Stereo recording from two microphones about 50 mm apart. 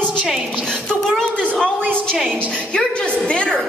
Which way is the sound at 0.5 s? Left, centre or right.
Centre.